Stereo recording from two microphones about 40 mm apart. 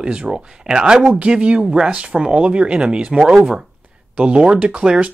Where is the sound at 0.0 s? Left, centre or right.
Right.